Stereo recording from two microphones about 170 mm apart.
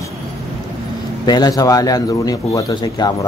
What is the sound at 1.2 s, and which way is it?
Speech, 25° left (ahead or behind).